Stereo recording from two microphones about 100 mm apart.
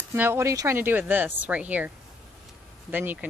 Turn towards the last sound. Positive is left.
turn(degrees=-20)  # may be behind; listen again after turning